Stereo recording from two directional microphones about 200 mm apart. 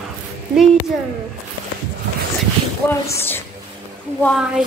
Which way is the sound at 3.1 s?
10° left (ahead or behind).